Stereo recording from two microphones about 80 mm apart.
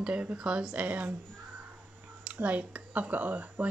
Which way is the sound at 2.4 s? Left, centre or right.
Centre.